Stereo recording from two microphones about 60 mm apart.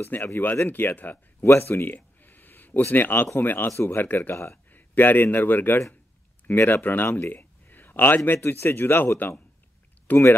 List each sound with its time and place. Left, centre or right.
0.0 s speech: left
1.4 s speech: left
3.7 s speech: left
4.0 s a man's voice: left